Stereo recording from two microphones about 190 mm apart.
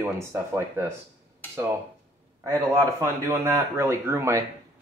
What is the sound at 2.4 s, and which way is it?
Speech, 15° right (ahead or behind).